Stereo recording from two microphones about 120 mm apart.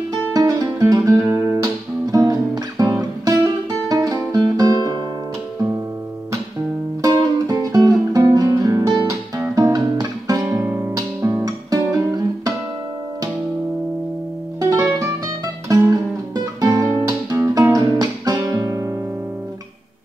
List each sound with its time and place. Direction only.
0.3 s music: 30° right (ahead or behind)
3.9 s music: 30° right (ahead or behind)
7.0 s music: 30° right (ahead or behind)
9.6 s guitar: 30° right (ahead or behind)
10.6 s music: 10° right (ahead or behind)
11.0 s guitar: 25° right (ahead or behind)
14.6 s music: 25° right (ahead or behind)
17.7 s guitar: 35° right (ahead or behind)